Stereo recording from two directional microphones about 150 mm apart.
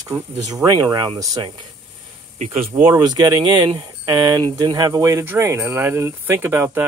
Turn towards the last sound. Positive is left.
turn(degrees=-15)  # may be behind; listen again after turning